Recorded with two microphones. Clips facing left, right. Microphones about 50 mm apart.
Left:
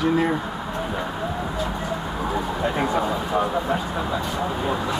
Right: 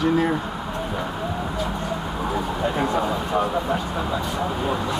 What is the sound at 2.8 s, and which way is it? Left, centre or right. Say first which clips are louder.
Speech: even; centre.